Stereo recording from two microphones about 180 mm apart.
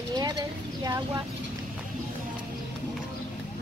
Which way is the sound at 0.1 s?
20° right (ahead or behind).